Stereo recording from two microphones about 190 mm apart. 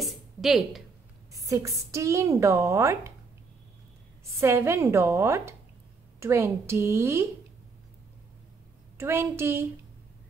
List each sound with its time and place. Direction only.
0.0 s a sound: centre (ahead or behind)
1.3 s a woman's voice: 15° right (ahead or behind)
4.4 s a woman's voice: 15° right (ahead or behind)
8.9 s a woman's voice: 15° right (ahead or behind)